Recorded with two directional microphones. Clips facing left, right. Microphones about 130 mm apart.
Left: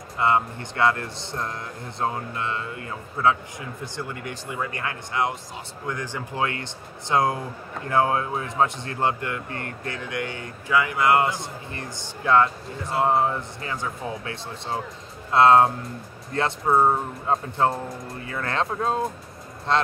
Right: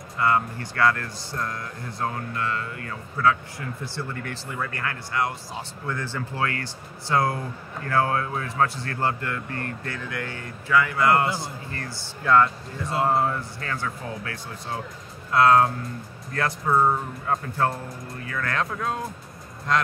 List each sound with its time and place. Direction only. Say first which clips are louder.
0.2 s speech: left 1 dB; 20° left (ahead or behind)